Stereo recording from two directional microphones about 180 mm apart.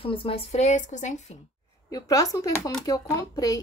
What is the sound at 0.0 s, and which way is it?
Speech, 30° left (ahead or behind).